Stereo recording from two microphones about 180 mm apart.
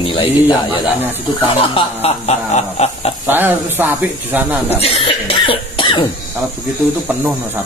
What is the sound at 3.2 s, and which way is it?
Speech, 10° right (ahead or behind).